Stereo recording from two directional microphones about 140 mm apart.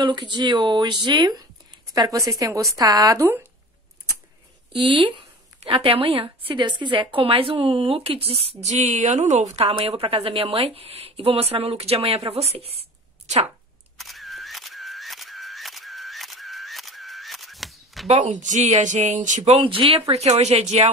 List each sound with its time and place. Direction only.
0.0 s a woman's voice: 35° right (ahead or behind)
4.7 s speech: 35° right (ahead or behind)
13.9 s single-lens reflex camera: centre (ahead or behind)
18.0 s speech: 55° right (ahead or behind)